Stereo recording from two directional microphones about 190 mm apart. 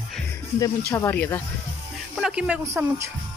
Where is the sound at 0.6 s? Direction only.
15° left (ahead or behind).